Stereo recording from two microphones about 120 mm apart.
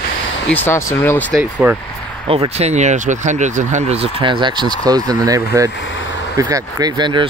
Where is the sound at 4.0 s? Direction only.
45° right (ahead or behind).